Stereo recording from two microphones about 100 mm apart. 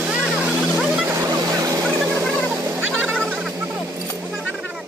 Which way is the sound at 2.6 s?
25° right (ahead or behind).